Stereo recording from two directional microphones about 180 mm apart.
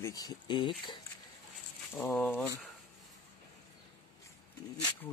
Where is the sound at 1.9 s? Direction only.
10° left (ahead or behind).